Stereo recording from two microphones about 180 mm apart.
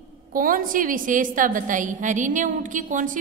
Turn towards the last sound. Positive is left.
turn(degrees=-45)  # may be behind; listen again after turning